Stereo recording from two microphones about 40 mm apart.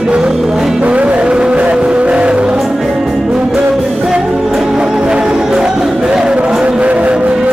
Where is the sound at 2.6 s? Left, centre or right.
Centre.